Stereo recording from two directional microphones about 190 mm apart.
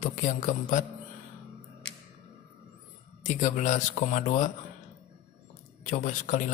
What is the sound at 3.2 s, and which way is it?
Speech, 40° left (ahead or behind).